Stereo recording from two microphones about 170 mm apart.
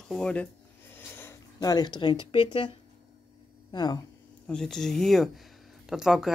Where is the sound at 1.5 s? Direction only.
25° left (ahead or behind).